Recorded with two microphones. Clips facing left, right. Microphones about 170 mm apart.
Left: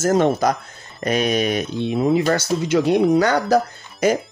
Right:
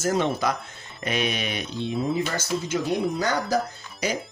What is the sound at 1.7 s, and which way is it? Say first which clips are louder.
Speech: left 6 dB; 65° left (ahead or behind).